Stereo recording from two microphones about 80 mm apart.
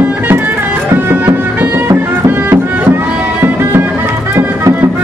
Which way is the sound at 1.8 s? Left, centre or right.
Right.